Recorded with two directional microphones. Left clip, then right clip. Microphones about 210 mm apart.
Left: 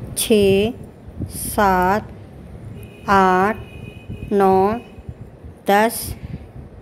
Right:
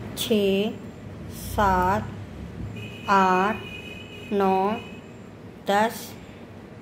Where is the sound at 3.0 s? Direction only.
50° left (ahead or behind).